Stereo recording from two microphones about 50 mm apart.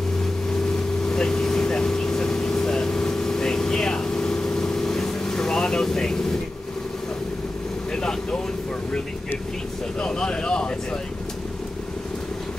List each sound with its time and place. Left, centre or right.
1.0 s vehicle: centre
7.9 s vehicle: centre
9.9 s a sound: centre